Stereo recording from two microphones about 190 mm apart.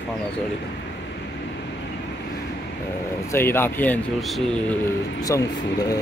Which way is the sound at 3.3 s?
10° left (ahead or behind).